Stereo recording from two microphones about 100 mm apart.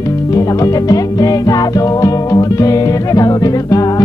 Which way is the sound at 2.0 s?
35° left (ahead or behind).